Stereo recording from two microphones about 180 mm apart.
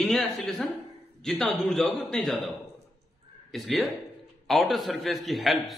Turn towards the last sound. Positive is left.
turn(degrees=0)  # may be behind; listen again after turning